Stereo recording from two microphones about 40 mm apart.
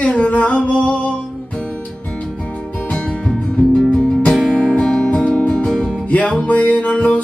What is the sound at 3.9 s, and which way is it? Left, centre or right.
Music, left.